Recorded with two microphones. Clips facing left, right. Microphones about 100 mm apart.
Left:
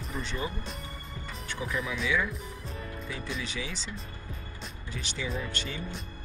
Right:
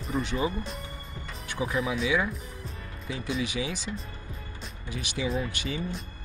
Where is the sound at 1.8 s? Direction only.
35° right (ahead or behind).